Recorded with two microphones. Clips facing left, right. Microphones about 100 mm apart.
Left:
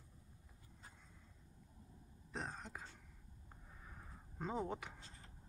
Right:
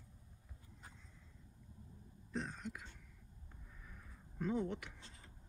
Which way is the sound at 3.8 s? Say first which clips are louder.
Left 3 dB; 20° left (ahead or behind).